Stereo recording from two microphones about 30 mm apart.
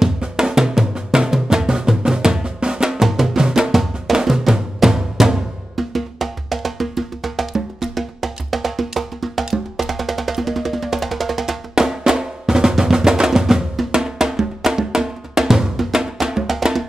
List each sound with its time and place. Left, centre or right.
0.2 s drum: right
1.5 s music: right
2.9 s music: centre
3.4 s music: right
3.7 s music: centre
4.8 s drum: centre
5.8 s music: centre
11.7 s music: centre